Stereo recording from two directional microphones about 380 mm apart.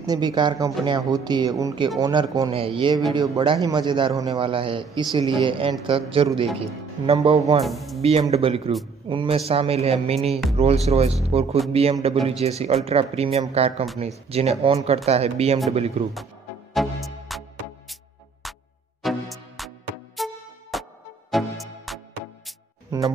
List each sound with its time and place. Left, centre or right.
0.0 s speech: centre
7.6 s speech: centre
8.0 s speech: centre
16.7 s music: centre
18.4 s music: centre